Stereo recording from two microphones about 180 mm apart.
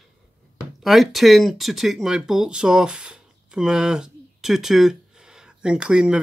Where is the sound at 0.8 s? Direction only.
Centre (ahead or behind).